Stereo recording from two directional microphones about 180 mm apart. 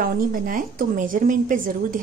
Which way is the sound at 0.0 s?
50° right (ahead or behind).